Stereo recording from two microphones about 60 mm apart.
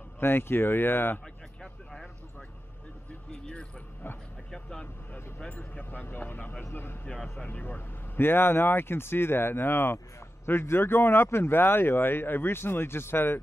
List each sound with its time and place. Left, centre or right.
0.2 s speech: left
1.6 s a sound: centre
4.5 s speech: centre
5.4 s speech: left